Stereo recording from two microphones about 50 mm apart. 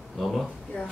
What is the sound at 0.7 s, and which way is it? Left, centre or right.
Speech, centre.